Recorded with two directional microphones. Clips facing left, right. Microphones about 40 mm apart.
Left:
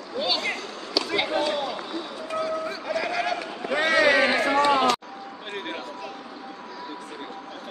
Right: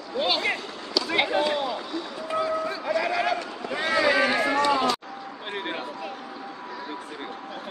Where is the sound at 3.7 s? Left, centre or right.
Left.